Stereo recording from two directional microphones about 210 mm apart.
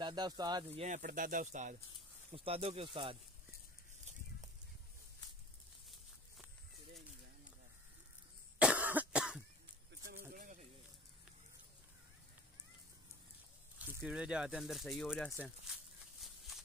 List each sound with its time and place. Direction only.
0.0 s speech: 20° right (ahead or behind)
0.8 s speech: 40° right (ahead or behind)
8.5 s cough: 5° right (ahead or behind)
10.3 s a sound: 40° right (ahead or behind)
13.7 s speech: 5° right (ahead or behind)
15.3 s a sound: centre (ahead or behind)